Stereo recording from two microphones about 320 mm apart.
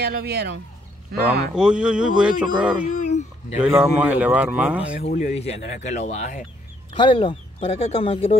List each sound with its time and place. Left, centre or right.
0.0 s speech: right
1.5 s speech: centre
3.0 s a sound: left
3.6 s speech: centre
5.0 s speech: left